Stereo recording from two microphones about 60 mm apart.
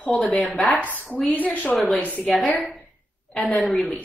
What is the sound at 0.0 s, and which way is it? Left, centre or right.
Speech, left.